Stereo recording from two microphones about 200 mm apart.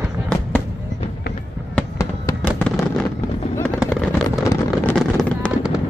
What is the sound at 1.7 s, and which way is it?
Fireworks, 10° left (ahead or behind).